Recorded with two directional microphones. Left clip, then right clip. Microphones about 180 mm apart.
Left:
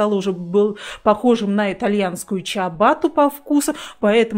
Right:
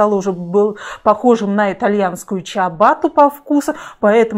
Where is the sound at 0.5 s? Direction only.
10° left (ahead or behind).